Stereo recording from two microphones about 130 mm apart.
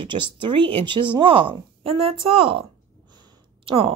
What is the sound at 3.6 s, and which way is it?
Speech, 45° right (ahead or behind).